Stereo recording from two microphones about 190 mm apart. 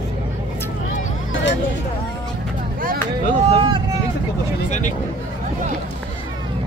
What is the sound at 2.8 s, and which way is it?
Vehicle, 45° right (ahead or behind).